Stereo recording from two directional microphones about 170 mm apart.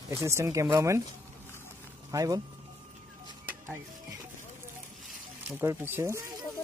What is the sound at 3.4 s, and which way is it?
Music, 10° right (ahead or behind).